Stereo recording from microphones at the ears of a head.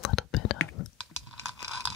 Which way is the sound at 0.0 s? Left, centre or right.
Left.